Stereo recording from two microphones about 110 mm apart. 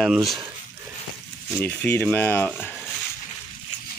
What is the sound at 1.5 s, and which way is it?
Speech, 15° left (ahead or behind).